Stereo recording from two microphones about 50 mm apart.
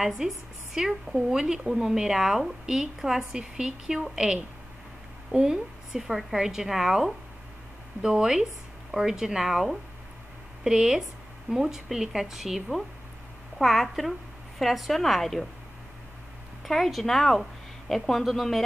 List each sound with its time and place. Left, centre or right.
0.0 s a woman's voice: centre
16.6 s a woman's voice: centre